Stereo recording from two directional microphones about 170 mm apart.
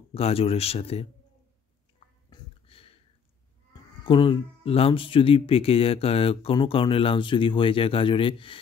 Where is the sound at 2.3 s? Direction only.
35° left (ahead or behind).